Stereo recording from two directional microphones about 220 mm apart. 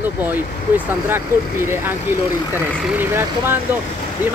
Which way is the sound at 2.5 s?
10° right (ahead or behind).